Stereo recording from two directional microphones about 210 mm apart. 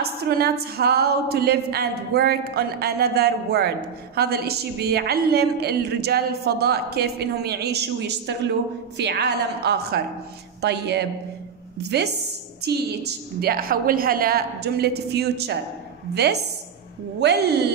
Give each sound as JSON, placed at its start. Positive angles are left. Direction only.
{"t": 0.0, "sound": "a woman's voice", "side_deg": -50}
{"t": 17.2, "sound": "a woman's voice", "side_deg": -50}